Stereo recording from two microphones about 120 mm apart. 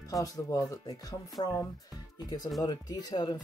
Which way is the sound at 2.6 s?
35° left (ahead or behind).